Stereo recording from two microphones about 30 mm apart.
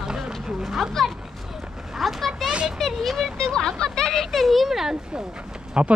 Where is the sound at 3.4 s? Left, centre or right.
Left.